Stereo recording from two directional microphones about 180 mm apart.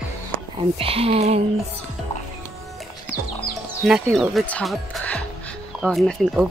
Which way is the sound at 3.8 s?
Centre (ahead or behind).